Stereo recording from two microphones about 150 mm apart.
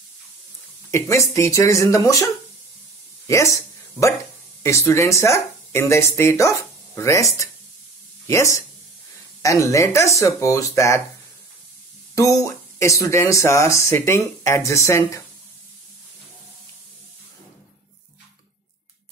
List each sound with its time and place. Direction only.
0.9 s speech: 20° left (ahead or behind)
3.3 s a sound: 20° left (ahead or behind)
4.6 s speech: 20° left (ahead or behind)
12.2 s speech: 20° left (ahead or behind)